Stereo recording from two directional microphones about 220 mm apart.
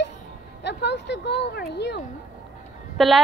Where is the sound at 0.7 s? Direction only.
50° left (ahead or behind).